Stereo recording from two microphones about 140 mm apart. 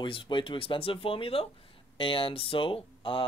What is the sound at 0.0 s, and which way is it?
Speech, 35° left (ahead or behind).